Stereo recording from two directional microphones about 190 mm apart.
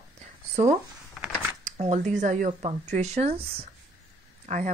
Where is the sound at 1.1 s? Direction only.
5° right (ahead or behind).